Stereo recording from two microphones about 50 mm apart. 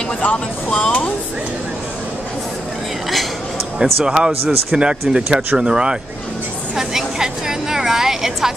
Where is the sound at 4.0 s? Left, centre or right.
Centre.